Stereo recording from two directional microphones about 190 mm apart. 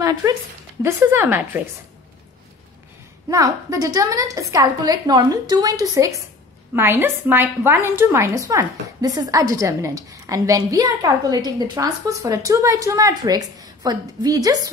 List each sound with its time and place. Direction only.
0.8 s a woman's voice: 15° right (ahead or behind)
3.3 s a woman's voice: 15° right (ahead or behind)